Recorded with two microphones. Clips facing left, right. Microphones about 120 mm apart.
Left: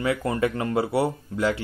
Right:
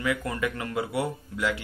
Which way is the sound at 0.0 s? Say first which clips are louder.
Left 5 dB; 30° left (ahead or behind).